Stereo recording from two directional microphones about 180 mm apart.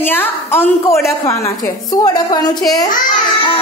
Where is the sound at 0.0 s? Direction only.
10° left (ahead or behind).